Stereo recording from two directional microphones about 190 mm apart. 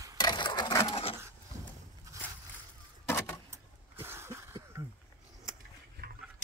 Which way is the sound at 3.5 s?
10° right (ahead or behind).